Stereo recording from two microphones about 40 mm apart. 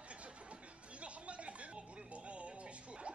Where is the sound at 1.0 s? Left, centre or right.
Right.